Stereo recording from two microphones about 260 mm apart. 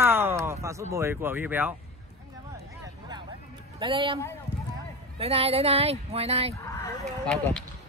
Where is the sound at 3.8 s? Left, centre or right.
Centre.